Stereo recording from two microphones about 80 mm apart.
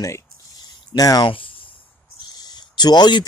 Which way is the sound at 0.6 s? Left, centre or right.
Left.